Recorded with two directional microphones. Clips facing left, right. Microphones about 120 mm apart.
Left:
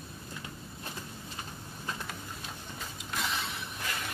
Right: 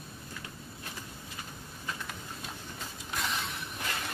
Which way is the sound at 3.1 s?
Centre (ahead or behind).